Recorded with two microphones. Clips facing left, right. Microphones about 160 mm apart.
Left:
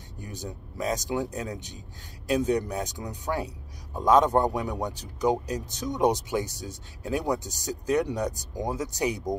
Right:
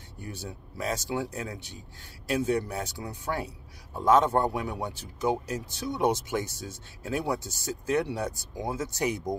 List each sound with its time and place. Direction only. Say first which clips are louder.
0.2 s speech: left 1 dB; 15° left (ahead or behind)